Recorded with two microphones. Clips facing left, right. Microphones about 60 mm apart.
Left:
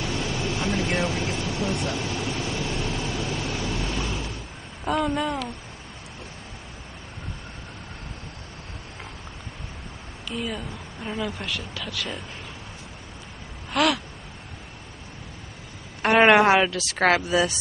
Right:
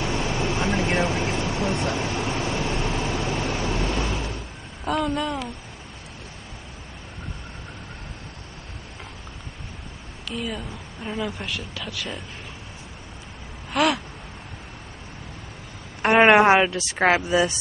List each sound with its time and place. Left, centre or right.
0.0 s vehicle: right
4.8 s speech: centre
10.2 s speech: centre
13.7 s gasp: centre
16.0 s a woman's voice: centre